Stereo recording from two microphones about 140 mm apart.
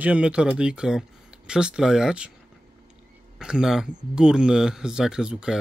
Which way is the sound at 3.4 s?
5° right (ahead or behind).